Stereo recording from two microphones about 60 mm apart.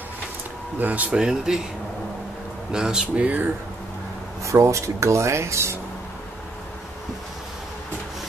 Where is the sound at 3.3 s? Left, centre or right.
Right.